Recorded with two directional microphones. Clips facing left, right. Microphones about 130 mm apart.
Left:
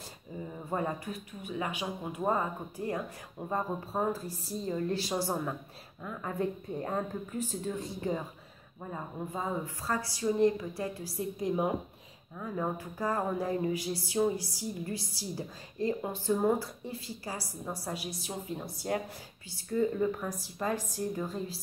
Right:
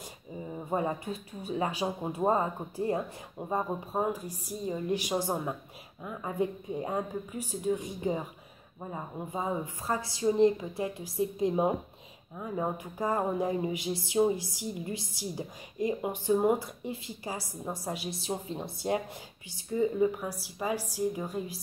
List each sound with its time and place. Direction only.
0.4 s music: 15° right (ahead or behind)
6.0 s speech: 15° right (ahead or behind)
8.9 s music: 15° right (ahead or behind)
19.5 s speech: 15° right (ahead or behind)